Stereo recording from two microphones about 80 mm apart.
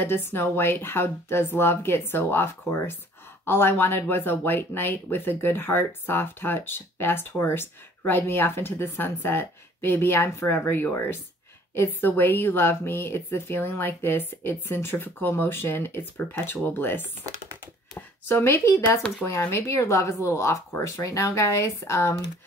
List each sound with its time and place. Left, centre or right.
0.0 s a woman's voice: left